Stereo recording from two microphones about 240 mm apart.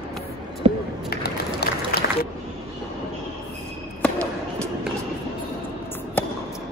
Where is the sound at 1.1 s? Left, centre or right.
Left.